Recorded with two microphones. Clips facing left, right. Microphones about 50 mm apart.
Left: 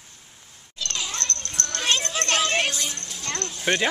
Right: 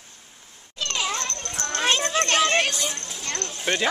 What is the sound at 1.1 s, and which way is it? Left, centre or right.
Children playing, centre.